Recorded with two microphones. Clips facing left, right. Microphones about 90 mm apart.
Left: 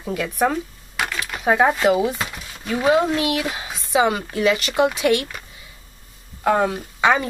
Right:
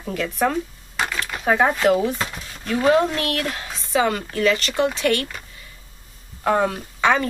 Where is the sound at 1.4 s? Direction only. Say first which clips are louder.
Left 1 dB; 15° left (ahead or behind).